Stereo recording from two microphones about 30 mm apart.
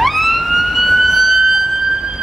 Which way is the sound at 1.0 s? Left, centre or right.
Centre.